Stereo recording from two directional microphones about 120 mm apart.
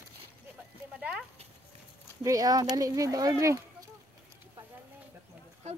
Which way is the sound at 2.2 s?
30° right (ahead or behind).